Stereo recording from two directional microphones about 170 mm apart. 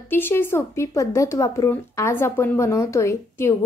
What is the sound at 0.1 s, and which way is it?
Speech, 10° left (ahead or behind).